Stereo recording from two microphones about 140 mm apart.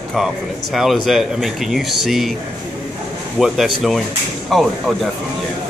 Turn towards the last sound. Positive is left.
turn(degrees=0)  # may be behind; listen again after turning